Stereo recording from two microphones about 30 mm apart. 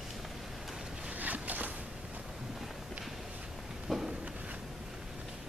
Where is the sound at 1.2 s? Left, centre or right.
Right.